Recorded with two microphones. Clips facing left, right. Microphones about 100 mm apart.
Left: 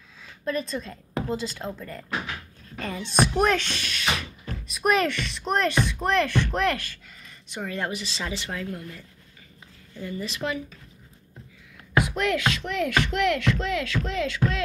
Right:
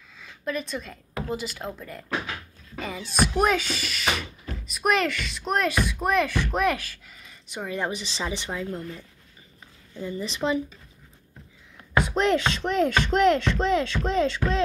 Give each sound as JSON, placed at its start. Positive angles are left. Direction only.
{"t": 0.2, "sound": "a woman's voice", "side_deg": 0}
{"t": 8.7, "sound": "speech", "side_deg": -30}
{"t": 12.1, "sound": "speech", "side_deg": -30}